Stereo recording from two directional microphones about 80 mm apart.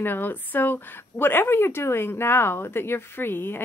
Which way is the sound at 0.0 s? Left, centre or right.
Left.